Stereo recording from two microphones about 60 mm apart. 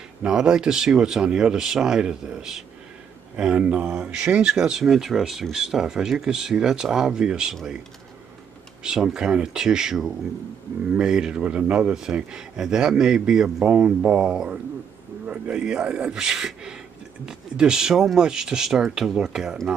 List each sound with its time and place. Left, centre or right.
0.2 s speech: centre
8.8 s speech: centre